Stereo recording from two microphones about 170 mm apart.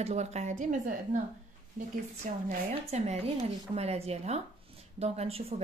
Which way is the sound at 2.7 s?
35° right (ahead or behind).